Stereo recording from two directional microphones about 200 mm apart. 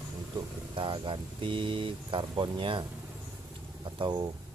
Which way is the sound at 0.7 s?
25° right (ahead or behind).